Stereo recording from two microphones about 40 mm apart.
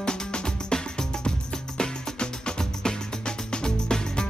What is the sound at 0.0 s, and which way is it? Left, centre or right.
Music, centre.